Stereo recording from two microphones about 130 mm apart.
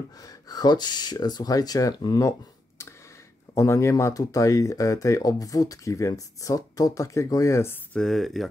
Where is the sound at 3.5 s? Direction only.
20° left (ahead or behind).